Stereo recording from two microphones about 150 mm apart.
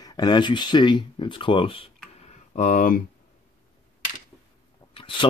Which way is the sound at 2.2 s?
50° left (ahead or behind).